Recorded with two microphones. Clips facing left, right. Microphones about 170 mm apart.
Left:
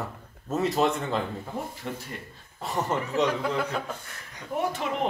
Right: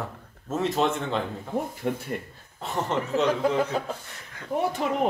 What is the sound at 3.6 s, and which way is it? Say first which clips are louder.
Speech: right 4 dB; 30° right (ahead or behind).